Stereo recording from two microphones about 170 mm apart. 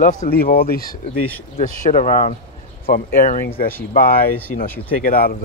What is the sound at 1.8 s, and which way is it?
Speech, 50° left (ahead or behind).